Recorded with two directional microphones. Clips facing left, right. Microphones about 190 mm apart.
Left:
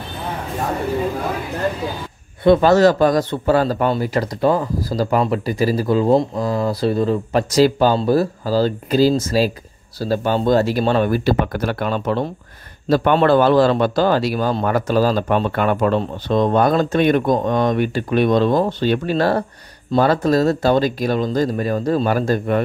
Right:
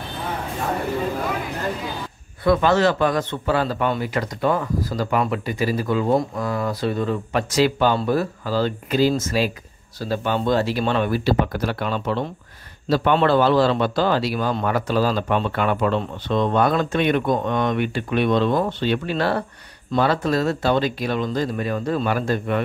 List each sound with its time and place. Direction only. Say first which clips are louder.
2.4 s a man's voice: left 5 dB; 25° left (ahead or behind)
2.7 s speech: left 5 dB; 40° left (ahead or behind)